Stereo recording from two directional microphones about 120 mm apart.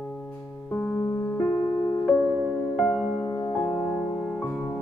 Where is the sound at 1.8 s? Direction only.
35° left (ahead or behind).